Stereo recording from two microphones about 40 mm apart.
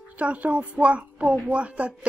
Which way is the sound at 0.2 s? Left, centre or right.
Right.